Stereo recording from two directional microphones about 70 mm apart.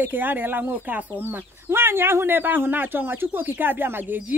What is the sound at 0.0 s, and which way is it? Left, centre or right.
Speech, right.